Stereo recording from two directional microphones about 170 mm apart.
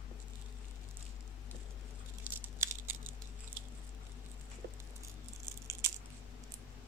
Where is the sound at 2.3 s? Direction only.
10° right (ahead or behind).